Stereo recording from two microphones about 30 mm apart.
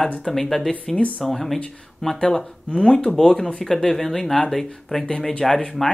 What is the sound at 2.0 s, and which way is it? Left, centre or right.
Speech, left.